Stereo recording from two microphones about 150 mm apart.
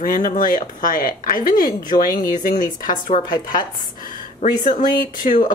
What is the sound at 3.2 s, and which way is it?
Speech, 30° left (ahead or behind).